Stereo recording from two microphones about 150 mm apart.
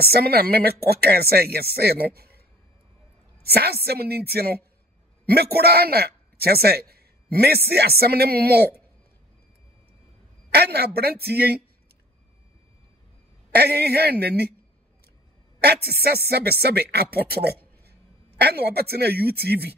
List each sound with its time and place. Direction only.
0.0 s speech: 90° right
3.4 s speech: 90° right
10.5 s speech: 90° right
13.5 s speech: 90° right
15.6 s speech: 90° right